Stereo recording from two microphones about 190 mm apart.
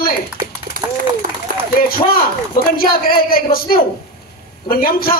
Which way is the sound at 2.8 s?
50° left (ahead or behind).